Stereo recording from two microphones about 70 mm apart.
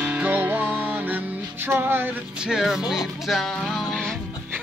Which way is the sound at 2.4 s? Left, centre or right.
Centre.